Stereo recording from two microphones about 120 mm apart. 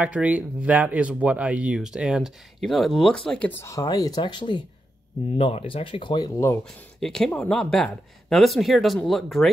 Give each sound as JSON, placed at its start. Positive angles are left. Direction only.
{"t": 0.0, "sound": "speech", "side_deg": -10}
{"t": 3.3, "sound": "speech", "side_deg": 15}
{"t": 5.4, "sound": "speech", "side_deg": 50}
{"t": 6.6, "sound": "speech", "side_deg": 5}